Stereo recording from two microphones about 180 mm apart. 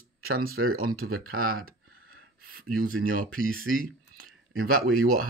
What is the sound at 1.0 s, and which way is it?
Speech, 90° right.